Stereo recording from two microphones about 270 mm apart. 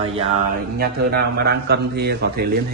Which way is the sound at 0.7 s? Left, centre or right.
Right.